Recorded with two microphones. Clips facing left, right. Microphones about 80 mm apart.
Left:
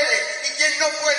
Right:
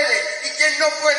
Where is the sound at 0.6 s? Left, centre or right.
Right.